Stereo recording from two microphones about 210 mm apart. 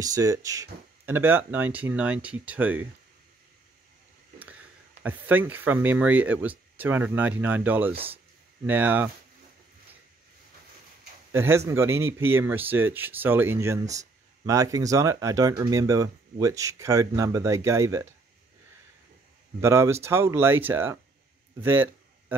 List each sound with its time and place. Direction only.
0.0 s speech: 15° right (ahead or behind)
5.0 s speech: 10° right (ahead or behind)
11.3 s speech: 10° right (ahead or behind)
19.6 s speech: 15° right (ahead or behind)